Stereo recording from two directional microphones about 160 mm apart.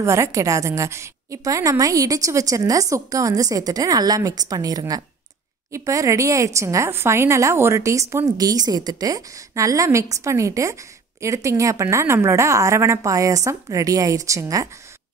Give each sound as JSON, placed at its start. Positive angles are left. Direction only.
{"t": 0.0, "sound": "a woman's voice", "side_deg": -20}